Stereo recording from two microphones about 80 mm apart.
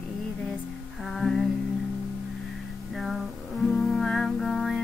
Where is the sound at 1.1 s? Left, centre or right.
Centre.